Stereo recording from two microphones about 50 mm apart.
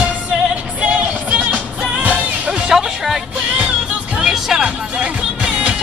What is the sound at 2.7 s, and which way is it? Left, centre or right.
Music, centre.